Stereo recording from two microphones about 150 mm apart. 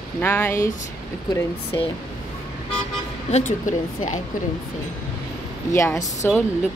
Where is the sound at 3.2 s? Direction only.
50° left (ahead or behind).